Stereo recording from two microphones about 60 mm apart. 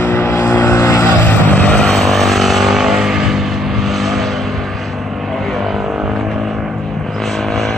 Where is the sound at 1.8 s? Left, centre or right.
Centre.